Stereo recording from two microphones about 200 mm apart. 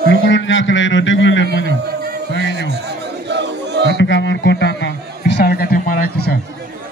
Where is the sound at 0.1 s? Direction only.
70° left (ahead or behind).